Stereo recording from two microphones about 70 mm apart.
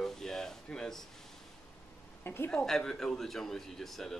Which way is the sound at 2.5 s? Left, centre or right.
Centre.